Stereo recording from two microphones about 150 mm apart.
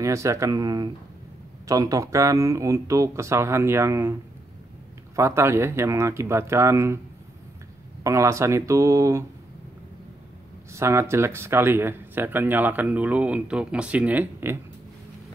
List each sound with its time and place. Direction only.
0.0 s speech: 20° right (ahead or behind)
8.0 s speech: 20° right (ahead or behind)
10.7 s speech: 20° right (ahead or behind)